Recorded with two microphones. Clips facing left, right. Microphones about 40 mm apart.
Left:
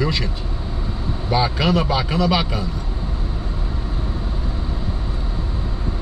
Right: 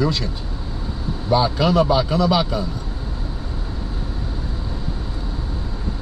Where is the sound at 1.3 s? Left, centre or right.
Centre.